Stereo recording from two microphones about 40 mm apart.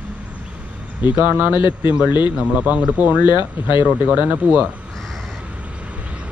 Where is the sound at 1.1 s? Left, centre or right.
Right.